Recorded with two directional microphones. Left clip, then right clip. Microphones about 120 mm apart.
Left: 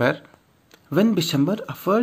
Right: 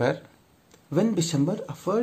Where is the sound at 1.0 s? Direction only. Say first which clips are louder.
Left 4 dB; 25° left (ahead or behind).